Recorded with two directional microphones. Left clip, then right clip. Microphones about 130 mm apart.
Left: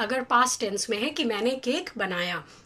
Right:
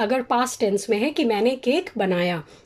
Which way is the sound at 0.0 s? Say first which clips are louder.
Right 2 dB; 30° right (ahead or behind).